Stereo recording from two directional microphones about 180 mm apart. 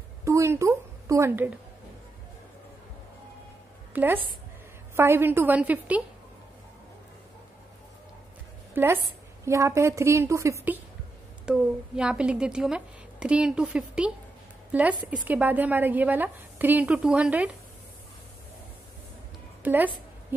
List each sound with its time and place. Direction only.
0.2 s a sound: 15° right (ahead or behind)
3.9 s a woman's voice: 10° right (ahead or behind)
8.7 s a woman's voice: 10° right (ahead or behind)
19.6 s a woman's voice: 10° right (ahead or behind)